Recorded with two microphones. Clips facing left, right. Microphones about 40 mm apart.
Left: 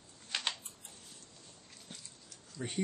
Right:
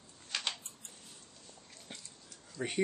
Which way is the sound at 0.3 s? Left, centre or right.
Left.